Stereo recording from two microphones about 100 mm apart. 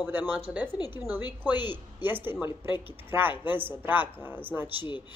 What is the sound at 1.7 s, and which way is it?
Speech, 20° right (ahead or behind).